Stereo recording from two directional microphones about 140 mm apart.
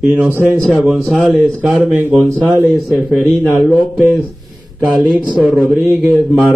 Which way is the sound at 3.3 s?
Centre (ahead or behind).